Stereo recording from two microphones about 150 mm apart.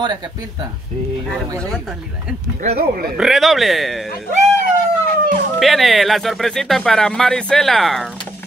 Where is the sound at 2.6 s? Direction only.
90° right.